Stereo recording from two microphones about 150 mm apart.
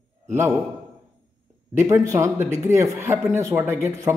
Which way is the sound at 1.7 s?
20° right (ahead or behind).